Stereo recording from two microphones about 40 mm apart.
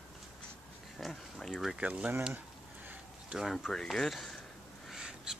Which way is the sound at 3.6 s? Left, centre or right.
Centre.